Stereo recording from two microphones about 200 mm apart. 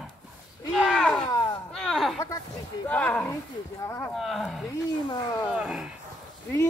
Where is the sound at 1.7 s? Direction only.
Centre (ahead or behind).